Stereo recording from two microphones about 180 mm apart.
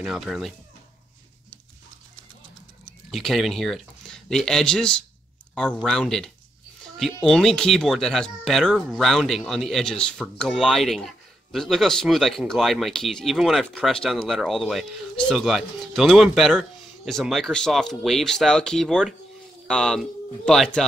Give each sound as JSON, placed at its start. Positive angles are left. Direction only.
{"t": 0.0, "sound": "speech", "side_deg": 0}
{"t": 2.8, "sound": "speech", "side_deg": 0}